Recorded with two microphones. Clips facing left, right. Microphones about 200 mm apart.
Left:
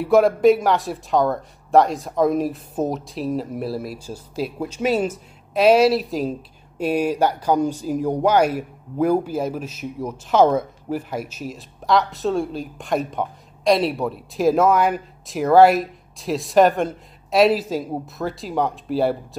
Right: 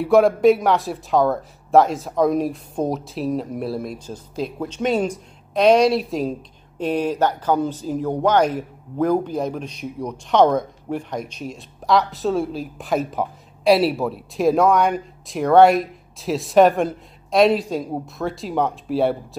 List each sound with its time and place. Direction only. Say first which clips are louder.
0.0 s speech: even; centre (ahead or behind)